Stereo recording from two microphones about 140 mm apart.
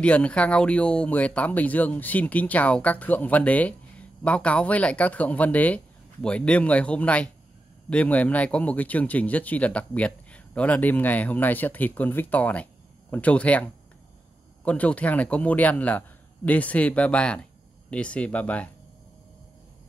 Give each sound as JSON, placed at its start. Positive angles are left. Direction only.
{"t": 0.0, "sound": "speech", "side_deg": 10}